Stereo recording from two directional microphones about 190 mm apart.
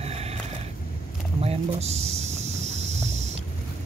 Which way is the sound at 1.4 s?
35° right (ahead or behind).